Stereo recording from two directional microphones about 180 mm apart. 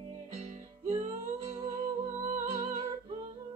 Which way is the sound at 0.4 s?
35° right (ahead or behind).